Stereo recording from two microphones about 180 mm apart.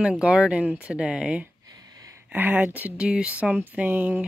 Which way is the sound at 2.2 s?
10° right (ahead or behind).